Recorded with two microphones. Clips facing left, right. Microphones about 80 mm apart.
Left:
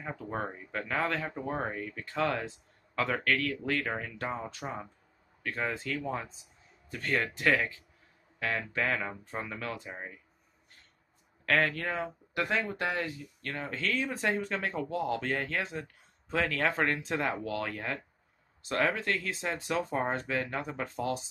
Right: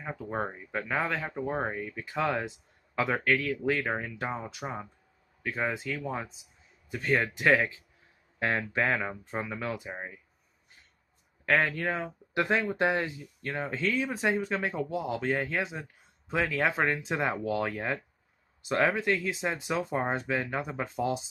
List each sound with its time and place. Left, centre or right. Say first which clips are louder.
0.0 s speech: right 2 dB; centre
3.9 s speech: right 2 dB; centre
11.4 s speech: right 2 dB; centre
12.4 s speech: right 4 dB; right